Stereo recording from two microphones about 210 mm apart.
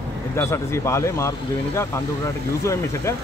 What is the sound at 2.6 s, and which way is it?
Speech, 15° left (ahead or behind).